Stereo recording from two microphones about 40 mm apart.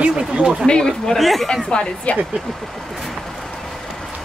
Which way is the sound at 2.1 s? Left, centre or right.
Left.